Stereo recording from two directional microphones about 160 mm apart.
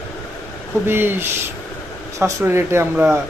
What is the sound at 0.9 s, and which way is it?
Speech, 15° right (ahead or behind).